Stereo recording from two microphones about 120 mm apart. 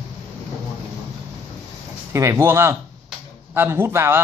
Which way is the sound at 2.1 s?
25° right (ahead or behind).